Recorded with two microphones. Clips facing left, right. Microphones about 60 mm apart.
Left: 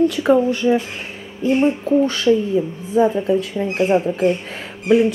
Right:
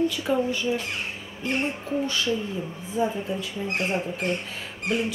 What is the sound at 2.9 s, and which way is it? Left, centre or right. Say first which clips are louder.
Speech: left 11 dB; left.